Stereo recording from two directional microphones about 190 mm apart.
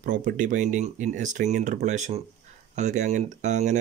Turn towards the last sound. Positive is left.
turn(degrees=-40)  # may be behind; listen again after turning